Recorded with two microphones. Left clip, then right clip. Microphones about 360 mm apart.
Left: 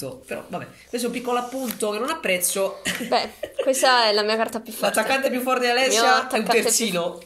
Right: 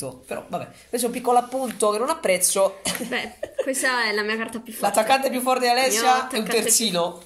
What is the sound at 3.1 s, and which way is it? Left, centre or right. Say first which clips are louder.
A woman's voice: left 6 dB; centre.